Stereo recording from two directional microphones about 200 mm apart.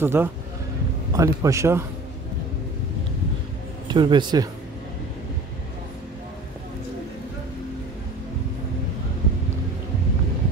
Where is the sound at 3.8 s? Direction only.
20° right (ahead or behind).